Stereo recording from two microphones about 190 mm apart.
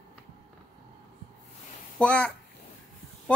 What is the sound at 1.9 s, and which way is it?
Speech, 5° left (ahead or behind).